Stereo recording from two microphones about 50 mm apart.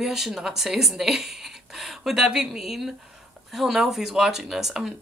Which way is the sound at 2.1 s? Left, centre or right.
Centre.